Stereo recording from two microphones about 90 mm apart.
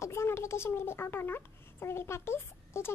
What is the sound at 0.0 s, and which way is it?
A woman's voice, 30° left (ahead or behind).